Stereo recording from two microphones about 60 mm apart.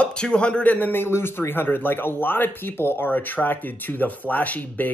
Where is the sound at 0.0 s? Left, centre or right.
Centre.